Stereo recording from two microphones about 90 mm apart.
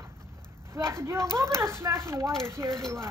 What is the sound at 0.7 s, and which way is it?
Speech, 30° right (ahead or behind).